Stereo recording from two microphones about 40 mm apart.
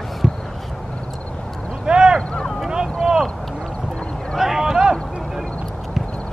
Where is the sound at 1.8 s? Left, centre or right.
Right.